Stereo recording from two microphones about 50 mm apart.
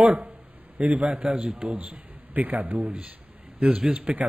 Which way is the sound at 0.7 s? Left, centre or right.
Centre.